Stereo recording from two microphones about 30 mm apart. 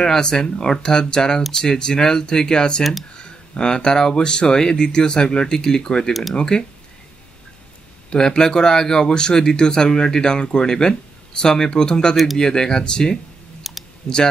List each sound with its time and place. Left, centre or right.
0.0 s speech: centre
2.8 s speech: centre
3.2 s speech: left
8.1 s speech: left
13.6 s clicking: centre
14.0 s speech: left